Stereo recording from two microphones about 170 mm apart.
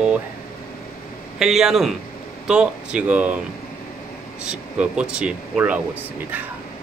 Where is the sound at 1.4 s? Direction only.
Centre (ahead or behind).